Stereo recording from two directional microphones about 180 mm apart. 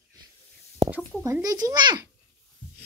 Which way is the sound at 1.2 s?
20° right (ahead or behind).